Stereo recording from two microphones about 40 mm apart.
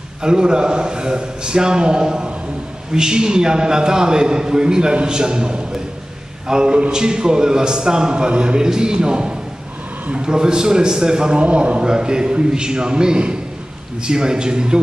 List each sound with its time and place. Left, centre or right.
0.2 s a man's voice: right
11.4 s a man's voice: right
11.9 s a man's voice: centre